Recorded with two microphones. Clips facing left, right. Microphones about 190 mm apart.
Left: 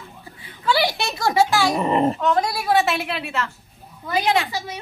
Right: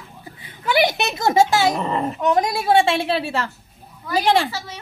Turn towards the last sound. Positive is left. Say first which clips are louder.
# left 2 dB
turn(degrees=15)  # may be behind; listen again after turning